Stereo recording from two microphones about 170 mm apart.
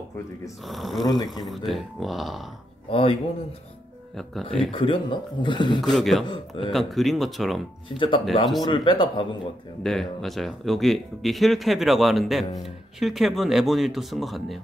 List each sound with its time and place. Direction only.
0.7 s speech: centre (ahead or behind)
1.0 s speech: 25° left (ahead or behind)
1.7 s speech: centre (ahead or behind)
2.9 s speech: 35° left (ahead or behind)
4.2 s speech: centre (ahead or behind)
4.6 s speech: 30° left (ahead or behind)
5.8 s speech: centre (ahead or behind)
6.2 s speech: 30° left (ahead or behind)
6.7 s speech: centre (ahead or behind)
8.6 s speech: 30° left (ahead or behind)
9.8 s speech: centre (ahead or behind)